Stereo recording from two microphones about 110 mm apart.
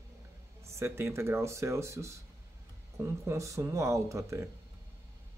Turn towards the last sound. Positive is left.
turn(degrees=-25)  # may be behind; listen again after turning